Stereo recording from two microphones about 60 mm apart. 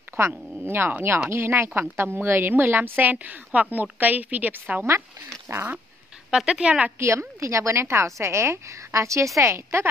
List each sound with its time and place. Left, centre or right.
0.1 s a woman's voice: right
5.5 s speech: right
6.3 s speech: centre
7.0 s a woman's voice: right